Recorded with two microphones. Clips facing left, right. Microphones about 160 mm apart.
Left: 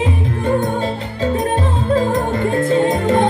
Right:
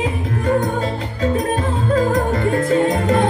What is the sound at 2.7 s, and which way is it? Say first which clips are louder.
Music: left 2 dB; 30° left (ahead or behind).